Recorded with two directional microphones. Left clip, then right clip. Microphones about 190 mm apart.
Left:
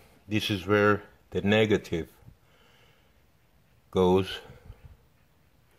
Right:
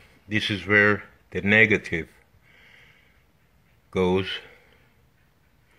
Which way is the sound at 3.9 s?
20° left (ahead or behind).